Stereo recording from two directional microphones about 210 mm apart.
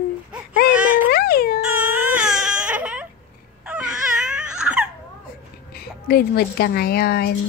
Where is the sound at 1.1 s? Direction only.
50° left (ahead or behind).